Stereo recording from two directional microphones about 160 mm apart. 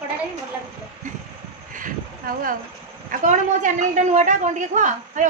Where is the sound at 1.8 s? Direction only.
60° right (ahead or behind).